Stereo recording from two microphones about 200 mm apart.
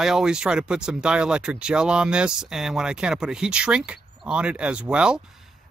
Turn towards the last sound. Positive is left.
turn(degrees=-5)  # may be behind; listen again after turning